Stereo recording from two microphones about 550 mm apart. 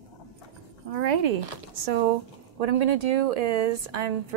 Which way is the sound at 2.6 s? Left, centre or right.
Right.